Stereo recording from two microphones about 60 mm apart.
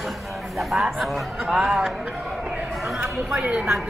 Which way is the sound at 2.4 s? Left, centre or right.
Centre.